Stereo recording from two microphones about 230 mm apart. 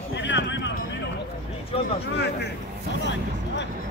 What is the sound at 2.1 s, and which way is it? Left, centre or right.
Speech, left.